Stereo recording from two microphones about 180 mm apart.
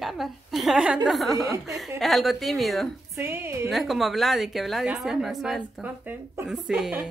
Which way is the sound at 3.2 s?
10° right (ahead or behind).